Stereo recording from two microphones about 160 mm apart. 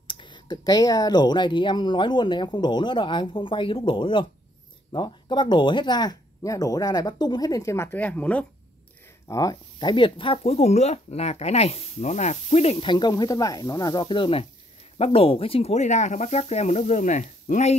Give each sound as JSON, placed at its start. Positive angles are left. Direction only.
{"t": 0.0, "sound": "speech", "side_deg": 30}
{"t": 9.3, "sound": "speech", "side_deg": 20}